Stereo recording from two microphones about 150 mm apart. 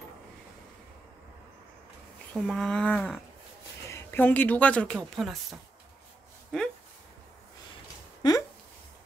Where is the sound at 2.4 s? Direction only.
5° left (ahead or behind).